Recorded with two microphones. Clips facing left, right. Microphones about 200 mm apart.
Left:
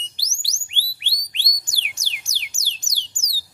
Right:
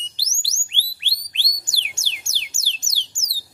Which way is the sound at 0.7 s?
15° left (ahead or behind).